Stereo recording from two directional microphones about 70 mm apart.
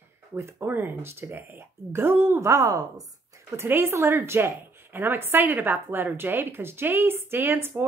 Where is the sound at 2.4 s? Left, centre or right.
Right.